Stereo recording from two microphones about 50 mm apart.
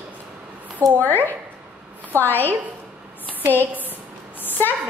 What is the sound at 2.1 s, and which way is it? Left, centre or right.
Speech, left.